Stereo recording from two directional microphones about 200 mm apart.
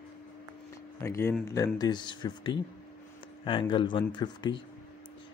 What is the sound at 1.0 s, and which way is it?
Speech, 15° left (ahead or behind).